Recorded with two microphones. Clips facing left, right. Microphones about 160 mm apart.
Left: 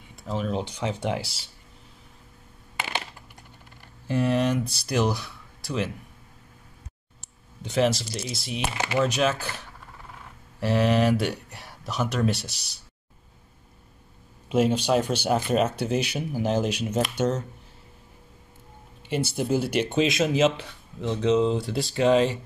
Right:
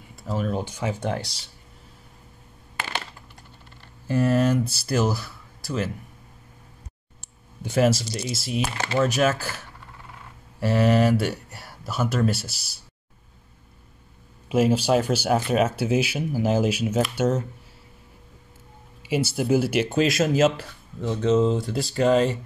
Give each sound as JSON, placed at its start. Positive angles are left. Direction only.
{"t": 0.1, "sound": "speech", "side_deg": -5}
{"t": 4.1, "sound": "speech", "side_deg": 0}
{"t": 7.6, "sound": "speech", "side_deg": -5}
{"t": 8.7, "sound": "speech", "side_deg": 15}
{"t": 9.0, "sound": "speech", "side_deg": -5}
{"t": 14.5, "sound": "speech", "side_deg": -5}
{"t": 19.0, "sound": "speech", "side_deg": -5}